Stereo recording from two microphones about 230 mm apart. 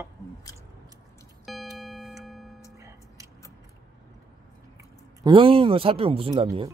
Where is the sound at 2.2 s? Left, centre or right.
Centre.